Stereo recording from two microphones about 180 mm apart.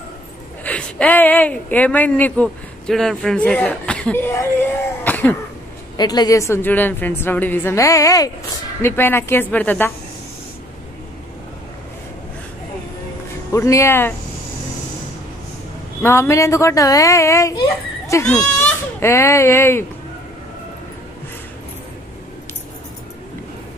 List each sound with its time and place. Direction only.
0.7 s speech: 5° left (ahead or behind)
5.9 s speech: 20° left (ahead or behind)
13.5 s speech: 15° left (ahead or behind)
16.0 s speech: 15° left (ahead or behind)